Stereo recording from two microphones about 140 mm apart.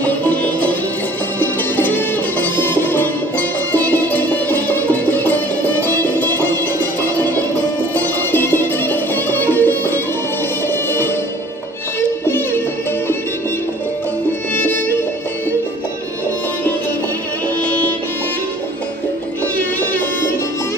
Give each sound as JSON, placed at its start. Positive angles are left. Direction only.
{"t": 0.0, "sound": "music", "side_deg": 10}
{"t": 12.3, "sound": "music", "side_deg": 15}
{"t": 14.5, "sound": "music", "side_deg": 15}
{"t": 19.5, "sound": "music", "side_deg": 10}